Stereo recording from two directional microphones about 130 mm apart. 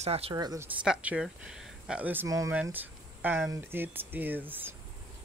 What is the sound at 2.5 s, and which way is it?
Speech, 15° right (ahead or behind).